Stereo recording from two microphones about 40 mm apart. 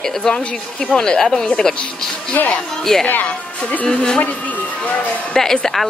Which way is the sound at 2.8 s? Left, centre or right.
Centre.